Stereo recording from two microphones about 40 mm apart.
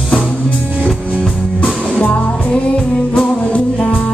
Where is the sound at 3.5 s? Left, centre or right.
Left.